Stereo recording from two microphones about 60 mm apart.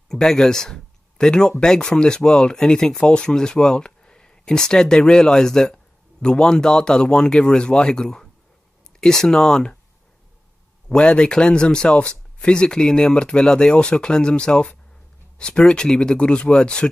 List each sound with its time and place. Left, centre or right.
0.1 s speech: centre
10.9 s speech: centre